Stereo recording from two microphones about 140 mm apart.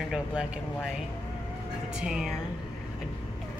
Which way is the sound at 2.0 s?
5° right (ahead or behind).